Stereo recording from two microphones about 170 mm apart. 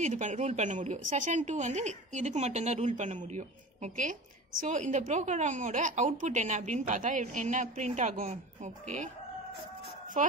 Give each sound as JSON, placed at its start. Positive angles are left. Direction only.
{"t": 0.0, "sound": "a woman's voice", "side_deg": -45}
{"t": 10.2, "sound": "a woman's voice", "side_deg": -45}